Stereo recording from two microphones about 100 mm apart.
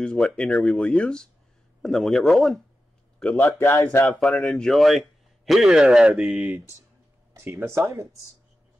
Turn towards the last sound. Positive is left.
turn(degrees=-25)  # may be behind; listen again after turning